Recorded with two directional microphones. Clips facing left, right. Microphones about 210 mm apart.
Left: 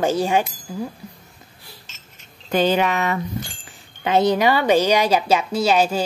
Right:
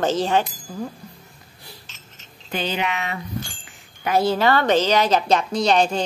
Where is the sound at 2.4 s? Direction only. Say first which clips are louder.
Left 7 dB; 45° left (ahead or behind).